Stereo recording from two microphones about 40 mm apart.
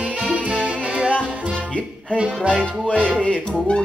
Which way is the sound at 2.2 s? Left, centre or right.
Right.